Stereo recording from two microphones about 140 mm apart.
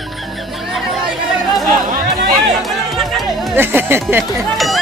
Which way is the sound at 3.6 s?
15° right (ahead or behind).